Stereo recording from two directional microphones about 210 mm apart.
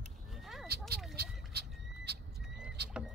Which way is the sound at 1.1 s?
50° right (ahead or behind).